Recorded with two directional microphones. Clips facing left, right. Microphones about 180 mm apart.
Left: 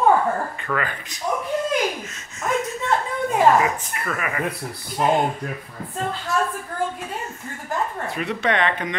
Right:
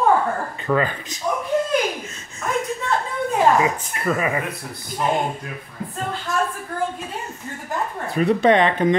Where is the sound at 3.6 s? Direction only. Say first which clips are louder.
Right 3 dB; 25° right (ahead or behind).